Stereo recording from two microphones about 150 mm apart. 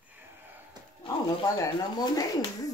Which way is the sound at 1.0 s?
25° left (ahead or behind).